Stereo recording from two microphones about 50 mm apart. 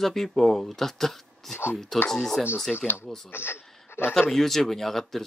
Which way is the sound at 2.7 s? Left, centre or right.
Left.